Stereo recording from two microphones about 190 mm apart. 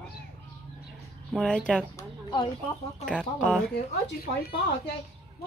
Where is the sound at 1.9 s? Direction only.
20° left (ahead or behind).